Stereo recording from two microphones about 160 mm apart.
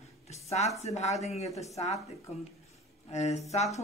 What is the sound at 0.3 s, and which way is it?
Speech, 45° left (ahead or behind).